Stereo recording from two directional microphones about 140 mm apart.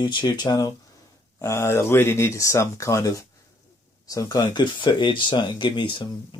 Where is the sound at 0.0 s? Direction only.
35° left (ahead or behind).